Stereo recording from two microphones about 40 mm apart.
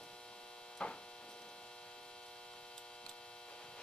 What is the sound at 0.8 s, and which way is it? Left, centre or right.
Hum, left.